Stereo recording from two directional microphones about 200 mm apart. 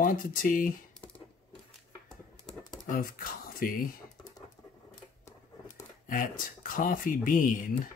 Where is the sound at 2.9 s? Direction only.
45° left (ahead or behind).